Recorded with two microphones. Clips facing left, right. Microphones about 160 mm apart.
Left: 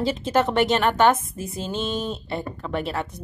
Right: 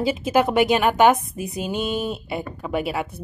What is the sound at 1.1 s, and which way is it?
Speech, 20° right (ahead or behind).